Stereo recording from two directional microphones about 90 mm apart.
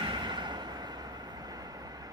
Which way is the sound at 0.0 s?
60° right (ahead or behind).